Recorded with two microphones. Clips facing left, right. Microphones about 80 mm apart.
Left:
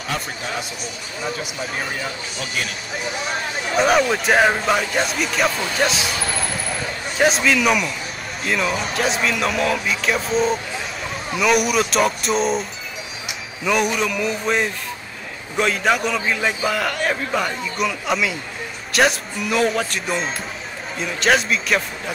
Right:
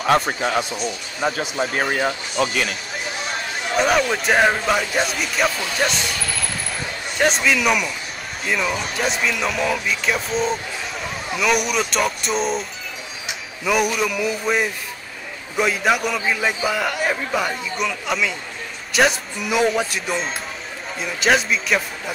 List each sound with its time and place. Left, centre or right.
0.0 s speech: right
2.3 s speech: right
3.7 s a man's voice: centre
7.2 s a man's voice: centre
13.7 s a man's voice: centre